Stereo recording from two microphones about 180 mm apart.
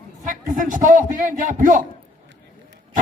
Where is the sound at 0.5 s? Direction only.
45° right (ahead or behind).